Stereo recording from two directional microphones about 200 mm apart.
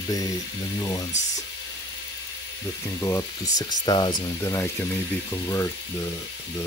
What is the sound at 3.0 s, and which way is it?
Speech, 15° left (ahead or behind).